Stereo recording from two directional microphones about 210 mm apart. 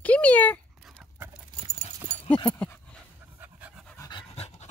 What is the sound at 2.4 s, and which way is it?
Dog, 10° left (ahead or behind).